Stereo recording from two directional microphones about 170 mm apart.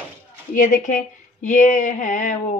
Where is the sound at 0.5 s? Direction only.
50° left (ahead or behind).